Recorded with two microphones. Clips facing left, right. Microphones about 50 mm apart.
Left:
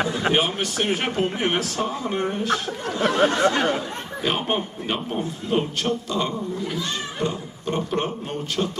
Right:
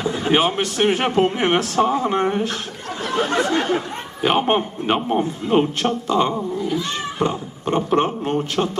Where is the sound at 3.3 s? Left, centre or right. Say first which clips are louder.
Even; right.